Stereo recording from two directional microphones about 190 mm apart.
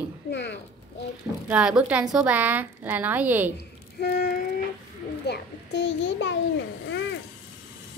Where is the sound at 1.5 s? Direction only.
5° right (ahead or behind).